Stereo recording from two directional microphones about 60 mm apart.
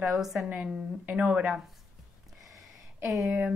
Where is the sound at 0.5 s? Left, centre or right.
Right.